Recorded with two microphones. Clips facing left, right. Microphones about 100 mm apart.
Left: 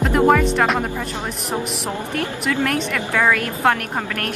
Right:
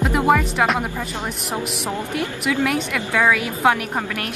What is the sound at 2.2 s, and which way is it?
A woman's voice, 10° right (ahead or behind).